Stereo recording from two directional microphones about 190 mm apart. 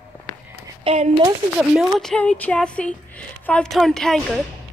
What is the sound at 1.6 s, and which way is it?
Speech, centre (ahead or behind).